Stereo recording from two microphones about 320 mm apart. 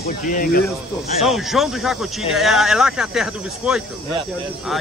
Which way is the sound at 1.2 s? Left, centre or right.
Centre.